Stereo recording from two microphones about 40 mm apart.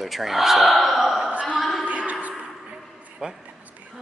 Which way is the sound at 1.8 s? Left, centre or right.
Right.